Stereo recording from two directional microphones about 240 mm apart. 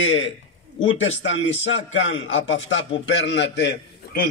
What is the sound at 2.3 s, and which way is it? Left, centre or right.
A man's voice, left.